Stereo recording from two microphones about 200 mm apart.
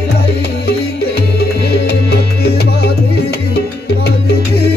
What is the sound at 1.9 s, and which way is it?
Music, 50° left (ahead or behind).